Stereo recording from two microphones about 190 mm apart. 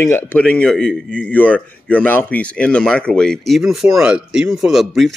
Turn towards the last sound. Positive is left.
turn(degrees=0)  # may be behind; listen again after turning